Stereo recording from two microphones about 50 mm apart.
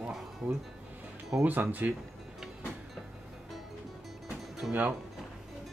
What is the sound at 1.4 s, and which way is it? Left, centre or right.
Speech, right.